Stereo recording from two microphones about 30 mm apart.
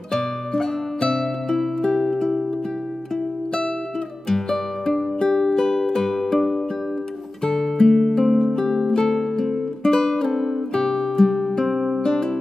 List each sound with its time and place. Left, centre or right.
0.1 s music: centre
4.3 s music: centre
12.1 s music: centre